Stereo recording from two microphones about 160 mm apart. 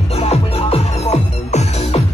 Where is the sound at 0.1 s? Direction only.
40° left (ahead or behind).